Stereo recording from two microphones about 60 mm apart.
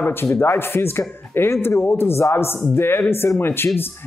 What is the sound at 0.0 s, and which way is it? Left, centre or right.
A man's voice, left.